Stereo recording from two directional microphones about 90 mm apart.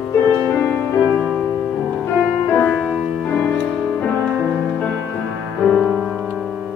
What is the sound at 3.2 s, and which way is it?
Music, 15° left (ahead or behind).